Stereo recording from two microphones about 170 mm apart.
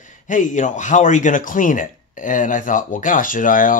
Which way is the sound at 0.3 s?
50° left (ahead or behind).